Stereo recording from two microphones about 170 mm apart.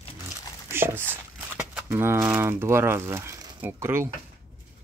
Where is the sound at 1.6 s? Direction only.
10° right (ahead or behind).